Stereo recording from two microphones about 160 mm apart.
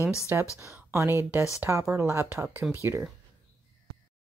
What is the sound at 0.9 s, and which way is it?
Speech, 15° right (ahead or behind).